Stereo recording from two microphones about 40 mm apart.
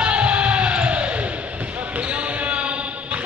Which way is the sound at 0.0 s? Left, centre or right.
Right.